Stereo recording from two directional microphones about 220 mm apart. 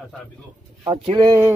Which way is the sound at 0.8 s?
20° right (ahead or behind).